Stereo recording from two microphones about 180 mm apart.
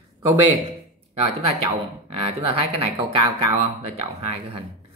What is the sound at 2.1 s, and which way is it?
Speech, 35° right (ahead or behind).